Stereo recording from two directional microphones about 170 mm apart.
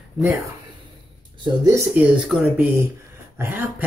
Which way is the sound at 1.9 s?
5° right (ahead or behind).